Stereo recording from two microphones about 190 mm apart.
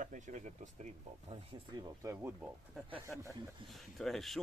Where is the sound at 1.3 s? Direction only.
15° right (ahead or behind).